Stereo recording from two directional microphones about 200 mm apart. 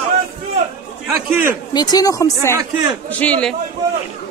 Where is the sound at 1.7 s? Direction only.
20° left (ahead or behind).